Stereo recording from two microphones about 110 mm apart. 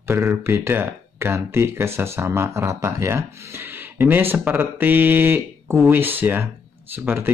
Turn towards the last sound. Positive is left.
turn(degrees=-20)  # may be behind; listen again after turning